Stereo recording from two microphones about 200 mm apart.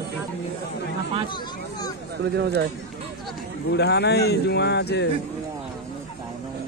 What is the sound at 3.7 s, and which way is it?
Speech, 55° left (ahead or behind).